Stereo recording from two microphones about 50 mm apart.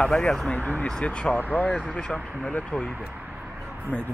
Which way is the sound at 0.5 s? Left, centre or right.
Left.